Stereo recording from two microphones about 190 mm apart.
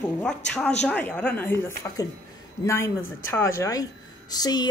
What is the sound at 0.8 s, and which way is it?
Speech, 5° left (ahead or behind).